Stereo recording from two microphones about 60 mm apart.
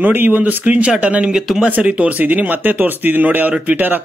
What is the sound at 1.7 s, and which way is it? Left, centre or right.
Speech, right.